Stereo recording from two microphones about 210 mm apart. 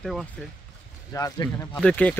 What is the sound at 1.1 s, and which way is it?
Speech, 15° left (ahead or behind).